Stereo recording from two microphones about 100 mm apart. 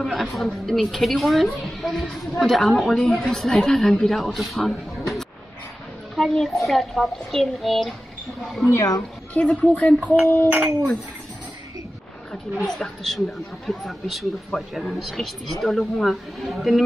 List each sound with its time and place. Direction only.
0.0 s a woman's voice: centre (ahead or behind)
8.7 s speech: 35° left (ahead or behind)
9.6 s speech: 15° left (ahead or behind)
10.5 s speech: 15° right (ahead or behind)
12.6 s a woman's voice: 5° left (ahead or behind)